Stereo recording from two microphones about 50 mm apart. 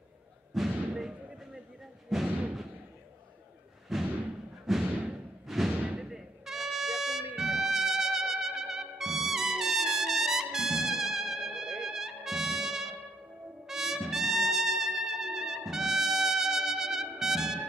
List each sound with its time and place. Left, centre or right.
0.5 s thump: centre
0.9 s basketball bounce: centre
2.1 s music: centre
3.9 s thump: centre
5.7 s music: centre
13.7 s trumpet: centre